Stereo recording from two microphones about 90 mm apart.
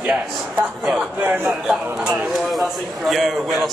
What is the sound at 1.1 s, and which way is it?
Speech, 20° right (ahead or behind).